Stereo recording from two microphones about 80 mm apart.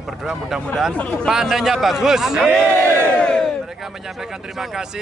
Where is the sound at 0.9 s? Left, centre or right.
Centre.